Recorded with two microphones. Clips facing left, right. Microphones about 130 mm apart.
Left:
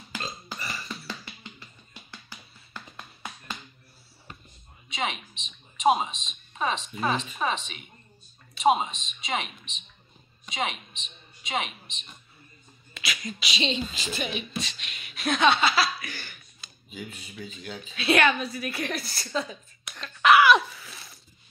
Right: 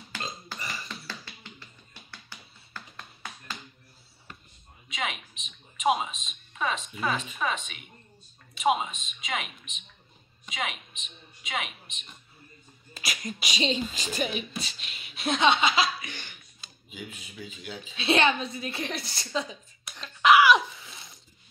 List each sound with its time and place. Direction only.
0.7 s music: 15° left (ahead or behind)
2.7 s music: 15° left (ahead or behind)
4.8 s a sound: 30° left (ahead or behind)
5.3 s speech: 30° left (ahead or behind)
11.0 s a woman's voice: 30° left (ahead or behind)
12.9 s a sound: 40° right (ahead or behind)
13.4 s a woman's voice: 45° right (ahead or behind)
14.8 s speech: 30° right (ahead or behind); by 17.9 s 10° right (ahead or behind)
17.9 s a sound: 25° right (ahead or behind)